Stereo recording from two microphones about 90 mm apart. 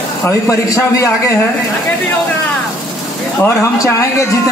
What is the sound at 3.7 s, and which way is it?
Speech, 30° left (ahead or behind).